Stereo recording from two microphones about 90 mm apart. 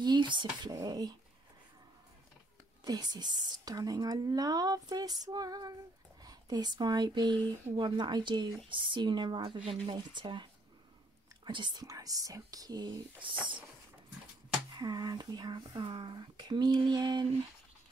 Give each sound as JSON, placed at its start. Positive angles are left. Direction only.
{"t": 0.0, "sound": "speech", "side_deg": -55}
{"t": 2.8, "sound": "a woman's voice", "side_deg": -50}
{"t": 7.7, "sound": "speech", "side_deg": -65}
{"t": 11.8, "sound": "speech", "side_deg": -40}
{"t": 13.2, "sound": "speech", "side_deg": -65}
{"t": 14.8, "sound": "a woman's voice", "side_deg": -50}